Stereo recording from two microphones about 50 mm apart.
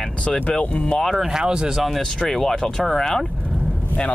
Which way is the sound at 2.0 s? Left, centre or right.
Centre.